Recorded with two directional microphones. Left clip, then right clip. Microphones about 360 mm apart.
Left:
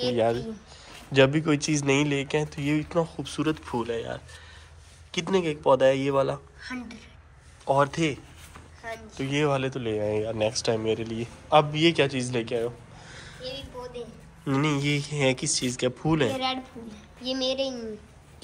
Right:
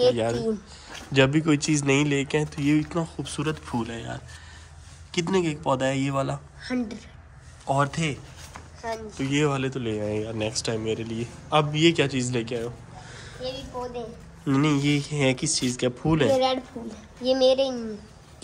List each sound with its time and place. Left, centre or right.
0.1 s speech: centre
7.6 s speech: centre
8.8 s speech: centre
9.2 s speech: centre
14.4 s speech: centre
17.2 s a child's voice: right